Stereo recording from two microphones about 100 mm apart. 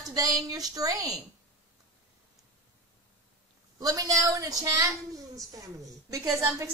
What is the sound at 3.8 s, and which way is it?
A woman's voice, 35° right (ahead or behind).